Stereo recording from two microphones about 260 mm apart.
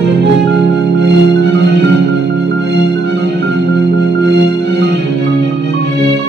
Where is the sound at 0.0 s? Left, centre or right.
Right.